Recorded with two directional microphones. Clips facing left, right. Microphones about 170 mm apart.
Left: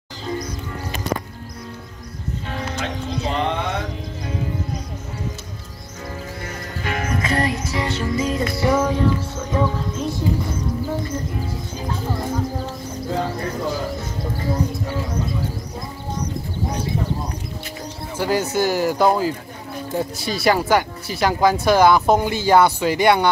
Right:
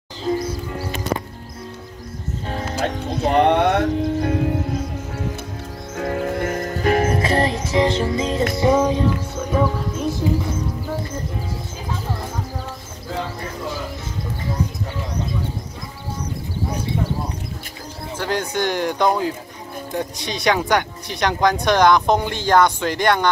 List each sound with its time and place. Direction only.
2.5 s music: 40° right (ahead or behind)
3.1 s music: 55° right (ahead or behind)
5.9 s music: 60° right (ahead or behind); by 10.0 s 10° right (ahead or behind)
18.1 s speech: 10° left (ahead or behind)